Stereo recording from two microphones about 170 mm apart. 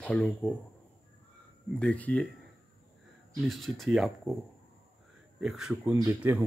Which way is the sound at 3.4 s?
Centre (ahead or behind).